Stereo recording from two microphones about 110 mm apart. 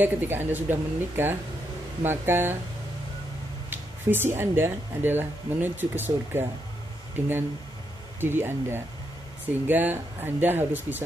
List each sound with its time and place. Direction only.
0.0 s speech: 20° right (ahead or behind)
3.7 s speech: 20° right (ahead or behind)